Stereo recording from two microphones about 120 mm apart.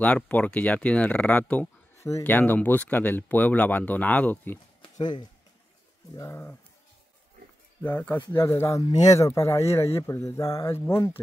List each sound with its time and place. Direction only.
0.0 s speech: 10° left (ahead or behind)
2.0 s a sound: 25° left (ahead or behind)
2.2 s speech: 15° left (ahead or behind)
4.9 s speech: 40° left (ahead or behind)
6.1 s speech: 25° left (ahead or behind)
7.8 s speech: 15° left (ahead or behind)